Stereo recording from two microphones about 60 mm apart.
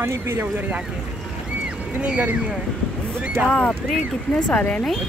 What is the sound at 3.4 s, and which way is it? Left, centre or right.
Speech, centre.